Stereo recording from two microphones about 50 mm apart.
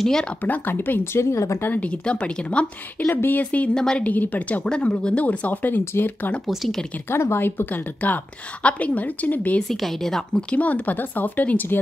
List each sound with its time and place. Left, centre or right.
0.0 s a woman's voice: centre
0.4 s speech: left
1.2 s speech: left
1.8 s a woman's voice: left
3.1 s speech: left
3.7 s a woman's voice: centre
4.0 s speech: left
6.4 s speech: centre
7.1 s a woman's voice: left
9.6 s a woman's voice: centre
10.3 s speech: left